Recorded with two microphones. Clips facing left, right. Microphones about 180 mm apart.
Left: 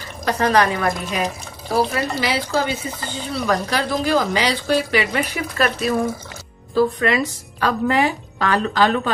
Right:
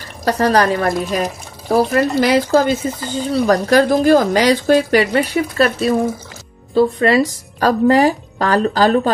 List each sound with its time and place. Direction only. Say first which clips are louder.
0.2 s speech: right 3 dB; 40° right (ahead or behind)
1.7 s speech: right 6 dB; 50° right (ahead or behind)